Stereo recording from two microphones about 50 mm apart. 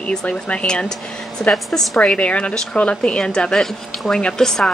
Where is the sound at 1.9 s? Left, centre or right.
Centre.